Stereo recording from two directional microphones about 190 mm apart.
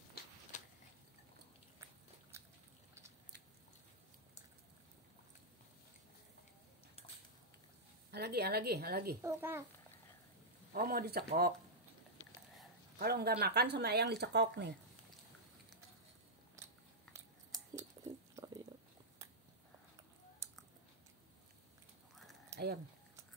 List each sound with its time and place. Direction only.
0.5 s a sound: 40° left (ahead or behind)
2.3 s a sound: 15° right (ahead or behind)
8.1 s speech: 60° right (ahead or behind)
9.2 s a child's voice: 15° right (ahead or behind)
10.7 s speech: 50° right (ahead or behind)
13.0 s speech: 55° right (ahead or behind)
18.0 s a sound: 20° right (ahead or behind)
18.3 s pig: 20° right (ahead or behind)
22.1 s typing: centre (ahead or behind)